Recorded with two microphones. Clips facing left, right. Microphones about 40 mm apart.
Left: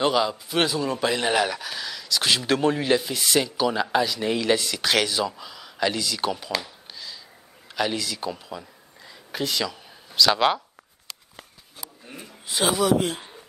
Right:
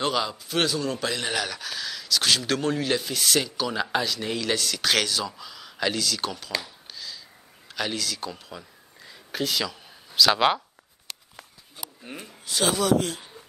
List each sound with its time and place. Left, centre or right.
0.0 s speech: centre
6.6 s a sound: centre
7.6 s a man's voice: centre
12.0 s speech: right
12.4 s a man's voice: centre